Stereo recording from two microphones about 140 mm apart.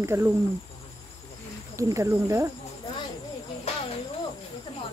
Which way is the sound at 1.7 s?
20° right (ahead or behind).